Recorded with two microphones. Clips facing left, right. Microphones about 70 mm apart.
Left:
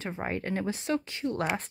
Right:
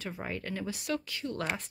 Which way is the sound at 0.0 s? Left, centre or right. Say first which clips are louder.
Left 5 dB; left.